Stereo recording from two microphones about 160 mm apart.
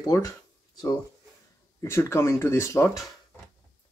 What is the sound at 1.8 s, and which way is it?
Speech, 15° left (ahead or behind).